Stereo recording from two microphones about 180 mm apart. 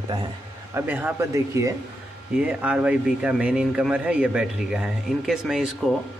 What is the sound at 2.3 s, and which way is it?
Speech, 5° right (ahead or behind).